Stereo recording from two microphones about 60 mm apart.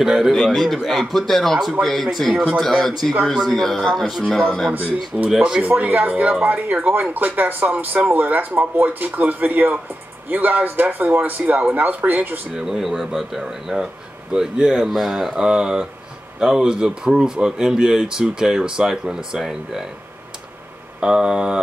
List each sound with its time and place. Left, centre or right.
0.0 s speech: centre
2.3 s speech: right
2.6 s speech: centre
5.4 s speech: centre
5.7 s speech: right
12.5 s speech: centre
14.9 s speech: centre
21.0 s speech: centre